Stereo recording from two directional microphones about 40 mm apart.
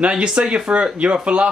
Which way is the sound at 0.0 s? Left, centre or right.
Right.